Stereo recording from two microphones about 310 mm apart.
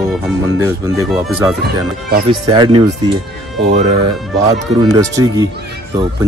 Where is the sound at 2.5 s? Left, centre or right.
Centre.